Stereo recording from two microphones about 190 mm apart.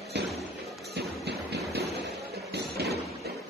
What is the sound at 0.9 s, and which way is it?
Music, 60° right (ahead or behind).